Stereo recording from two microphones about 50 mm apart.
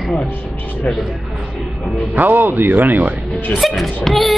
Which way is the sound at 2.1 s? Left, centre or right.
Right.